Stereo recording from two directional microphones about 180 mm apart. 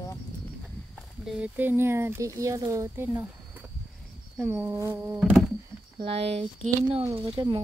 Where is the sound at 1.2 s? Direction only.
5° right (ahead or behind).